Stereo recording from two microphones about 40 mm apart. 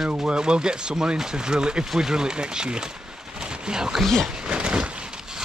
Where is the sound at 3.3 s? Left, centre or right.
Centre.